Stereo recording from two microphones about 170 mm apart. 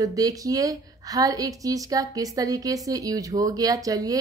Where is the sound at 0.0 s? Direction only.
20° right (ahead or behind).